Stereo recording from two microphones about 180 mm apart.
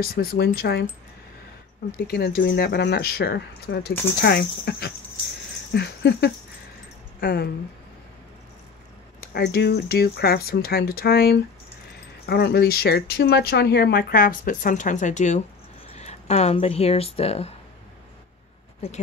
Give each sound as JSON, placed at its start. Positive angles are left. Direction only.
{"t": 0.0, "sound": "speech", "side_deg": 55}
{"t": 2.0, "sound": "speech", "side_deg": 60}
{"t": 5.7, "sound": "a sound", "side_deg": 65}
{"t": 7.2, "sound": "speech", "side_deg": 60}
{"t": 9.2, "sound": "speech", "side_deg": 60}
{"t": 18.8, "sound": "speech", "side_deg": 35}